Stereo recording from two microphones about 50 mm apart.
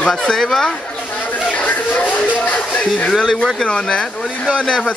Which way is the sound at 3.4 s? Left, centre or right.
Centre.